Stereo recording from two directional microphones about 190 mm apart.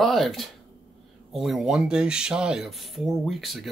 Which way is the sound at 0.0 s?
Centre (ahead or behind).